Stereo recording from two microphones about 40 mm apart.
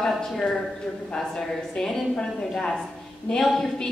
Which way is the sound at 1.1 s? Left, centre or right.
Centre.